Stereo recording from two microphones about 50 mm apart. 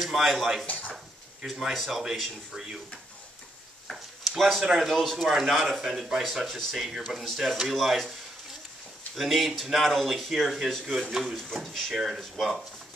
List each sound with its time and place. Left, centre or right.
0.0 s speech: centre
0.7 s dishes: left
1.4 s speech: centre
3.8 s a sound: centre
4.4 s speech: centre
9.1 s speech: centre
11.1 s speech: centre